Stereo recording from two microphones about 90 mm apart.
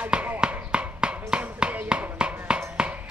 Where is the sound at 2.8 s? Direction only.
15° right (ahead or behind).